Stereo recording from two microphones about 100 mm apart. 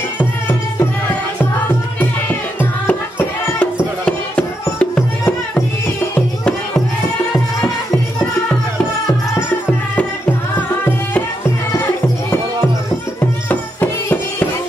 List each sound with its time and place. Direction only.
0.2 s music: 20° left (ahead or behind)
2.0 s music: 20° left (ahead or behind)
13.5 s music: 15° left (ahead or behind)